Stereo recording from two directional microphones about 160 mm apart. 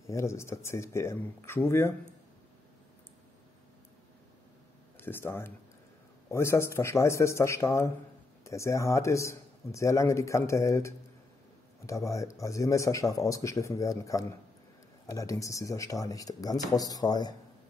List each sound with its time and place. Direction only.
0.0 s speech: 20° left (ahead or behind)
4.9 s speech: 15° left (ahead or behind)